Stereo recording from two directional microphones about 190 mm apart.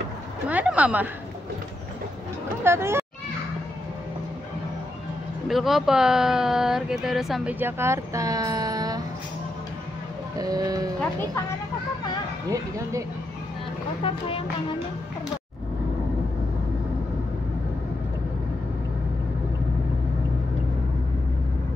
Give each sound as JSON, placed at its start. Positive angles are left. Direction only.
{"t": 0.5, "sound": "a woman's voice", "side_deg": -5}
{"t": 2.6, "sound": "speech", "side_deg": -15}
{"t": 5.5, "sound": "speech", "side_deg": 0}
{"t": 10.4, "sound": "speech", "side_deg": -20}
{"t": 11.0, "sound": "speech", "side_deg": 10}
{"t": 12.4, "sound": "a woman's voice", "side_deg": -15}
{"t": 14.0, "sound": "speech", "side_deg": 30}